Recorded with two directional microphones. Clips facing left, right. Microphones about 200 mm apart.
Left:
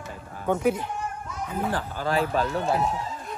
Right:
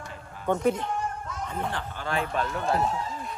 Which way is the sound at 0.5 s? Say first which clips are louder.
Left 1 dB; 5° left (ahead or behind).